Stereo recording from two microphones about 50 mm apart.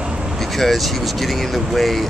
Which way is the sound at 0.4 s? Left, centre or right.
Centre.